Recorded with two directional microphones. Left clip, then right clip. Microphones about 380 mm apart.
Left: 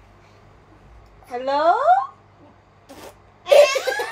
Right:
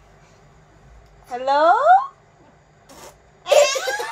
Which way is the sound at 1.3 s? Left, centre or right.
Centre.